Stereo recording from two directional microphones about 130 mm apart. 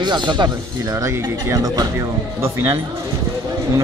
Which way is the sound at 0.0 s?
35° right (ahead or behind).